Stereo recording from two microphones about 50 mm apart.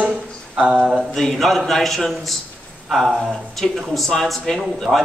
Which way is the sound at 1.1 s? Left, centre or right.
Centre.